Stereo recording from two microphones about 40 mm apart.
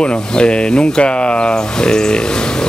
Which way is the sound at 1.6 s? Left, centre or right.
Centre.